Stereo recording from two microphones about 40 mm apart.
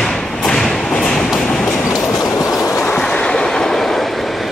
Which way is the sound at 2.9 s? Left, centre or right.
Left.